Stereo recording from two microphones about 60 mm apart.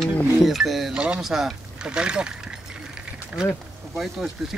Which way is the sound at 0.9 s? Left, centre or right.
Centre.